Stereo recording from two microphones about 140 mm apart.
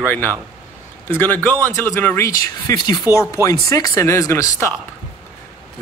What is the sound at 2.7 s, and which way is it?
Speech, 30° left (ahead or behind).